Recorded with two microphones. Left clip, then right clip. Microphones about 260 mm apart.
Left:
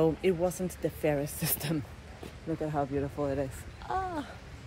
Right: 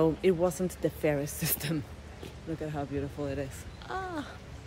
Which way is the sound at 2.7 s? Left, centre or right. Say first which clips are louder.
Left 4 dB; centre.